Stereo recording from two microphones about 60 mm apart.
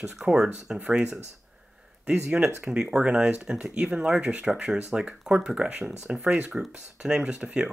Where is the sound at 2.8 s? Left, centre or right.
Centre.